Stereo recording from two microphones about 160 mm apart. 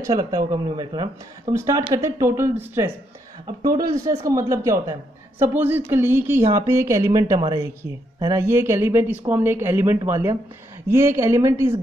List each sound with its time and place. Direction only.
0.0 s speech: 25° right (ahead or behind)